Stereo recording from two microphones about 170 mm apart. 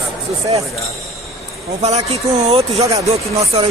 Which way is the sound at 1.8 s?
40° right (ahead or behind).